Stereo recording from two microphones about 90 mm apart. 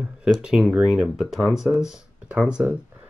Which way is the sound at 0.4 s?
10° right (ahead or behind).